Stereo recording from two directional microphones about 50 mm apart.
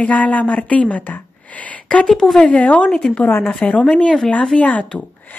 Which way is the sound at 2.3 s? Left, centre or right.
Left.